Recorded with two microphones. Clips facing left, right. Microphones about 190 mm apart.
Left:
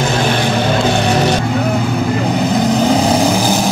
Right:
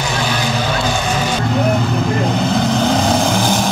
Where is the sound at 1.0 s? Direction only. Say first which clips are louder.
Left 5 dB; 70° left (ahead or behind).